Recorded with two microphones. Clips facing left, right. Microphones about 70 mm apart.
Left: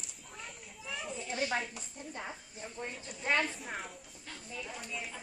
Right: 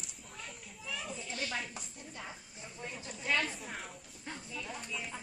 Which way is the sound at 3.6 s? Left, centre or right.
Centre.